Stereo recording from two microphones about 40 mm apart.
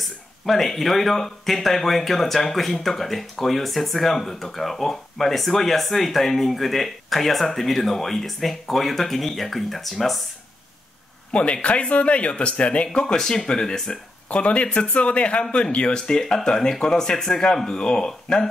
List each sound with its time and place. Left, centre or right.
0.5 s speech: centre
11.3 s speech: left
13.0 s speech: centre
14.3 s speech: left